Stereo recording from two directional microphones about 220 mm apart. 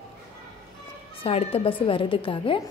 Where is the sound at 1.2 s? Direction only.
25° left (ahead or behind).